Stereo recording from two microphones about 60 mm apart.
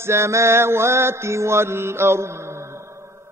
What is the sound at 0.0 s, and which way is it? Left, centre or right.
Mantra, right.